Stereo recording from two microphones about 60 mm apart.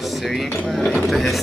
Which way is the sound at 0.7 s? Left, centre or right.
Centre.